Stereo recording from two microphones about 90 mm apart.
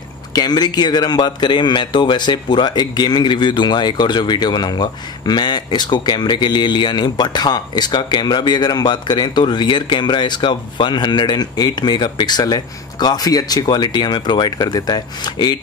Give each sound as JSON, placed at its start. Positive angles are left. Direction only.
{"t": 0.3, "sound": "a man's voice", "side_deg": 50}